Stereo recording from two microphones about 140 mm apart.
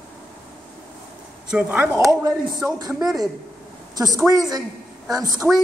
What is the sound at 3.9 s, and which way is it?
Speech, 25° right (ahead or behind).